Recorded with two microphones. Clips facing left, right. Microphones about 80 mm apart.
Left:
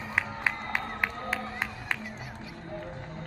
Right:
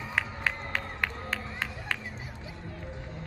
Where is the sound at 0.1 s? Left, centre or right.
Centre.